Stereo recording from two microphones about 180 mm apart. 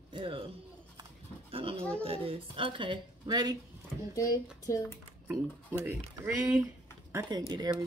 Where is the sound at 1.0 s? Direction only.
30° right (ahead or behind).